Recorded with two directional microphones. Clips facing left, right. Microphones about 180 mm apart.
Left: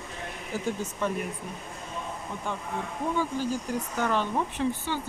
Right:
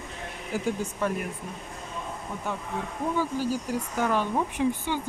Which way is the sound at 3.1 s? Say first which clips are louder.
Right 2 dB; 5° right (ahead or behind).